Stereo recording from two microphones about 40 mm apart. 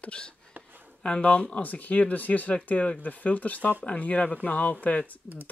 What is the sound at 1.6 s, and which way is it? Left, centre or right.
Speech, left.